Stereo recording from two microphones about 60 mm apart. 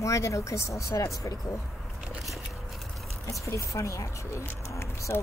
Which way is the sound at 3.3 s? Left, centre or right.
Left.